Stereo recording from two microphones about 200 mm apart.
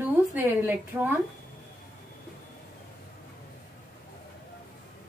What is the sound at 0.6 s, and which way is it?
Speech, 10° right (ahead or behind).